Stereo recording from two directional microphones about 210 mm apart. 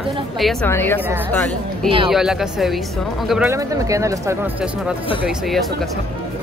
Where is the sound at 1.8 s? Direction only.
25° right (ahead or behind).